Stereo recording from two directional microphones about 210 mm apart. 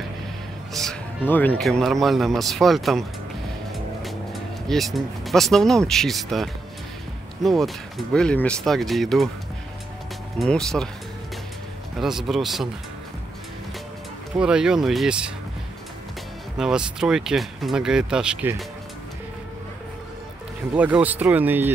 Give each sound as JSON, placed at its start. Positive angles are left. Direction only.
{"t": 0.7, "sound": "speech", "side_deg": 5}
{"t": 10.4, "sound": "speech", "side_deg": 0}
{"t": 12.0, "sound": "speech", "side_deg": 0}
{"t": 14.3, "sound": "speech", "side_deg": -5}
{"t": 16.5, "sound": "speech", "side_deg": -5}
{"t": 20.7, "sound": "speech", "side_deg": -5}